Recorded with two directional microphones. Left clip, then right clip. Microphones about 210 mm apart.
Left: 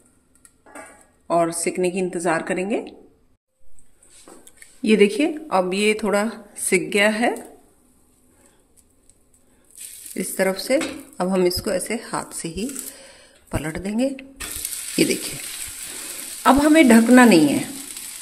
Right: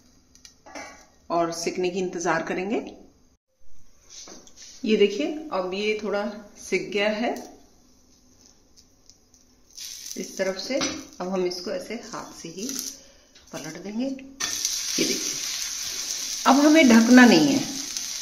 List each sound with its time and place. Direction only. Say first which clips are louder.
1.2 s a woman's voice: left 5 dB; 35° left (ahead or behind)
4.5 s speech: left 5 dB; 40° left (ahead or behind)
10.1 s speech: left 6 dB; 40° left (ahead or behind)
16.4 s a woman's voice: left 3 dB; 30° left (ahead or behind)